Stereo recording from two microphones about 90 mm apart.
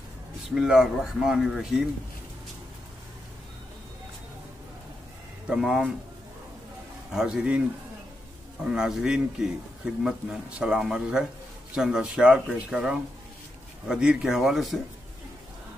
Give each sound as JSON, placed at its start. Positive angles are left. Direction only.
{"t": 0.6, "sound": "speech", "side_deg": -5}
{"t": 5.5, "sound": "speech", "side_deg": -10}
{"t": 7.1, "sound": "speech", "side_deg": -5}
{"t": 8.6, "sound": "speech", "side_deg": -5}